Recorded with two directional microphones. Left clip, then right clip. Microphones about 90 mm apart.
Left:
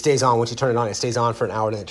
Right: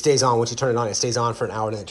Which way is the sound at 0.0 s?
45° right (ahead or behind).